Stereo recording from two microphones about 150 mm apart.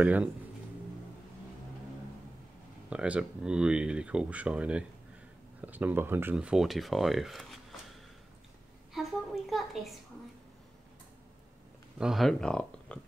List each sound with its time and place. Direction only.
0.0 s speech: 10° right (ahead or behind)
2.9 s speech: 5° right (ahead or behind)
8.9 s a sound: centre (ahead or behind)
12.0 s speech: centre (ahead or behind)